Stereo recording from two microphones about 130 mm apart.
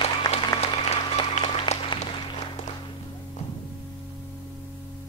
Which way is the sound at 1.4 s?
45° left (ahead or behind).